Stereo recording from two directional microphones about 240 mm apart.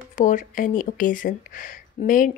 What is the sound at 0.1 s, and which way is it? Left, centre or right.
Speech, left.